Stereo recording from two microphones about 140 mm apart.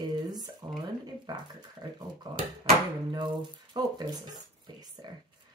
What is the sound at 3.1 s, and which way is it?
Speech, 30° right (ahead or behind).